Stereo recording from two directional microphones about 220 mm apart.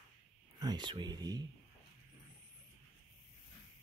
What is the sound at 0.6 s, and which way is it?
Speech, 20° right (ahead or behind).